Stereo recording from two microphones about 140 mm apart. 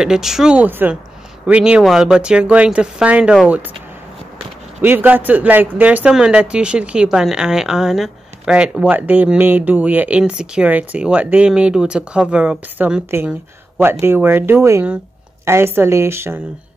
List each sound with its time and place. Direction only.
0.0 s speech: 5° right (ahead or behind)
4.8 s speech: 15° right (ahead or behind)